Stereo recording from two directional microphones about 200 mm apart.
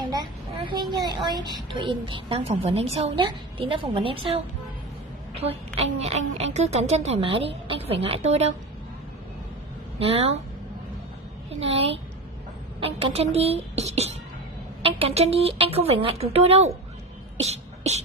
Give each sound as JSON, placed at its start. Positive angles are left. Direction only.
{"t": 0.9, "sound": "a woman's voice", "side_deg": -20}
{"t": 5.8, "sound": "a woman's voice", "side_deg": -30}
{"t": 9.9, "sound": "a woman's voice", "side_deg": -30}
{"t": 11.6, "sound": "a woman's voice", "side_deg": -30}
{"t": 17.4, "sound": "beatboxing", "side_deg": -35}